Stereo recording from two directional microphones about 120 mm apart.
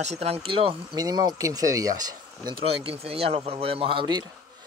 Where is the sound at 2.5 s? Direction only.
50° right (ahead or behind).